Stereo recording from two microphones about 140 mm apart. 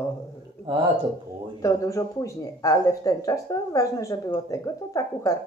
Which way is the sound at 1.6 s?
20° left (ahead or behind).